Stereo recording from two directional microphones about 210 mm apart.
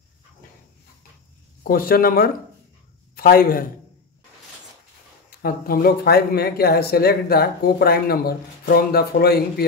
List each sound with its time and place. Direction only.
1.6 s speech: 45° left (ahead or behind)
5.4 s speech: 45° left (ahead or behind)